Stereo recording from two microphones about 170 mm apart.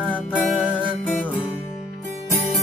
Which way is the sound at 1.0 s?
10° left (ahead or behind).